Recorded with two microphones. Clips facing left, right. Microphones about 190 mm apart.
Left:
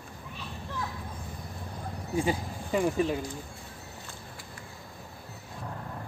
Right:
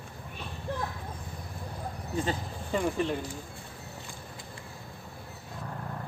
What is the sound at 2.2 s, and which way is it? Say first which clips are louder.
Speech: left 3 dB; 10° left (ahead or behind).